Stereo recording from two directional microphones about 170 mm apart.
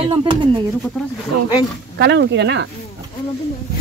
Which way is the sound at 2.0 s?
85° right.